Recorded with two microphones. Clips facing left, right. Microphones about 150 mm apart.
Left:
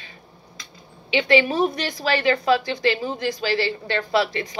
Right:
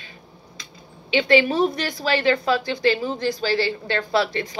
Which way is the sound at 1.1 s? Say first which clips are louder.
Right 1 dB; 35° right (ahead or behind).